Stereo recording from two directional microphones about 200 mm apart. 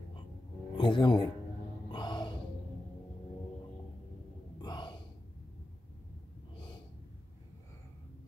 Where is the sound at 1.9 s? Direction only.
20° left (ahead or behind).